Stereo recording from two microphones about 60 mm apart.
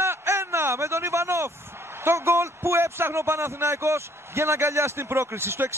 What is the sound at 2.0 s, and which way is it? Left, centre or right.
A man's voice, right.